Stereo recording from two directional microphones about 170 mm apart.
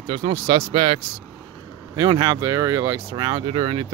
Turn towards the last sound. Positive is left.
turn(degrees=-30)  # may be behind; listen again after turning